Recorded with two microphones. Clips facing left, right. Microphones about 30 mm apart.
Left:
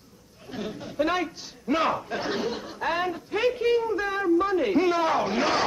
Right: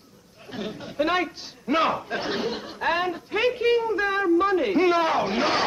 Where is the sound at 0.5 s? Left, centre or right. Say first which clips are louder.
Right 1 dB; centre.